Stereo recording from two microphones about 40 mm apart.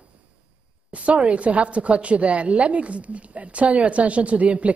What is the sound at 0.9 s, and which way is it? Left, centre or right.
A woman's voice, right.